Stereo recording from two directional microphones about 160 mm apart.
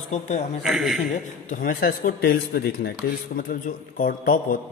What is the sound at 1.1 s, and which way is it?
Speech, 60° left (ahead or behind).